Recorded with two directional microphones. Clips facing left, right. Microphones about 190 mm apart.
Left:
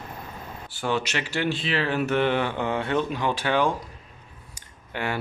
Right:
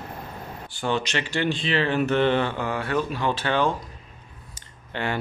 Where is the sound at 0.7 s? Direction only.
5° left (ahead or behind).